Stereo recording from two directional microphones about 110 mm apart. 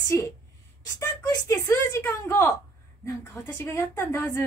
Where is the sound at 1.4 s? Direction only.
20° left (ahead or behind).